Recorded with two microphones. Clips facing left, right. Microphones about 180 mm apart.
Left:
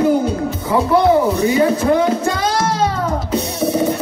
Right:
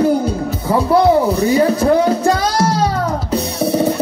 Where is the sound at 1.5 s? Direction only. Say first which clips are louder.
Right 3 dB; 35° right (ahead or behind).